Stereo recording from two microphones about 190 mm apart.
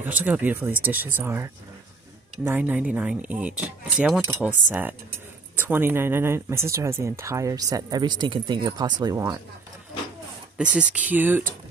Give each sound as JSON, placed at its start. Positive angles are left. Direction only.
{"t": 0.0, "sound": "speech", "side_deg": -10}
{"t": 10.8, "sound": "speech", "side_deg": -5}